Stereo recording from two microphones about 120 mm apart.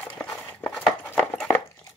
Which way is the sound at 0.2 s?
10° left (ahead or behind).